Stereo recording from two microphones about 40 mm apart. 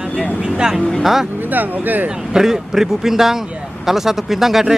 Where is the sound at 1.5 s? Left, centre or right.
Right.